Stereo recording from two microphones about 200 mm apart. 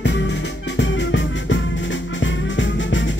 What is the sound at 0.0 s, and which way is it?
Music, 65° left (ahead or behind).